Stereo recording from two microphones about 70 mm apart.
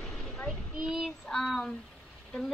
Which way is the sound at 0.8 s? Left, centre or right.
Centre.